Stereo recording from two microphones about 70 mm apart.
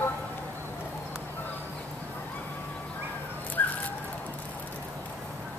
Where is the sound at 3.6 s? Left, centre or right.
Left.